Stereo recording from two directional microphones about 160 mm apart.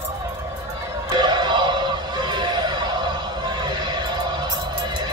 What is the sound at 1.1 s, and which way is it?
Music, 25° right (ahead or behind).